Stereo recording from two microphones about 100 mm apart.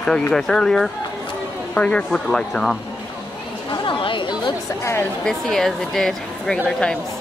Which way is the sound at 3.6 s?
60° left (ahead or behind).